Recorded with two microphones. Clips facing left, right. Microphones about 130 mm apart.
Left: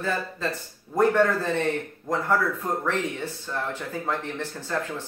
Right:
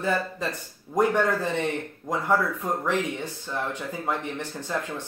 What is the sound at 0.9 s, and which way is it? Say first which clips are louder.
Speech: left 2 dB; 15° right (ahead or behind).